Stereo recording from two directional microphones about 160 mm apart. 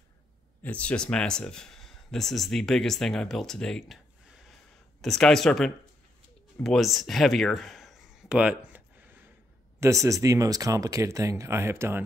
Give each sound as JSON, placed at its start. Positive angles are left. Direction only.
{"t": 0.6, "sound": "speech", "side_deg": 10}
{"t": 6.6, "sound": "a sound", "side_deg": 0}
{"t": 9.8, "sound": "speech", "side_deg": -20}